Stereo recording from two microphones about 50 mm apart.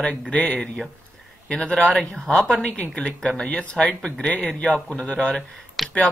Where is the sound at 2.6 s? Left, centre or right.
Left.